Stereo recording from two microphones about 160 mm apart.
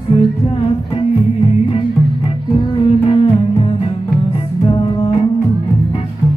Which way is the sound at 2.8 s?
35° left (ahead or behind).